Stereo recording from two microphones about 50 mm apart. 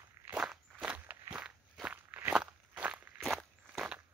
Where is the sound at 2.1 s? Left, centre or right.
Right.